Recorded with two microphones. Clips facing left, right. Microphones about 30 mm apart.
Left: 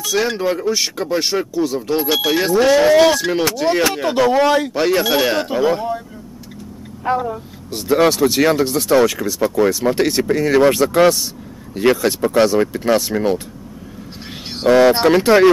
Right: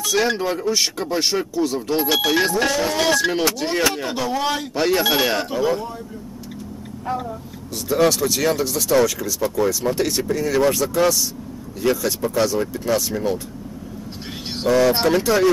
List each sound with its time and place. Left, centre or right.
0.0 s speech: centre
4.3 s speech: left
4.7 s speech: centre
5.5 s speech: left
7.2 s speech: left
8.0 s speech: left
14.7 s speech: left